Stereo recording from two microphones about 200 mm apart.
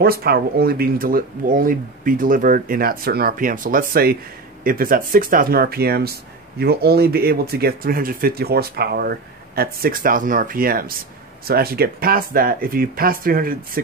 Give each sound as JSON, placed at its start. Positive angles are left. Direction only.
{"t": 0.0, "sound": "speech", "side_deg": -50}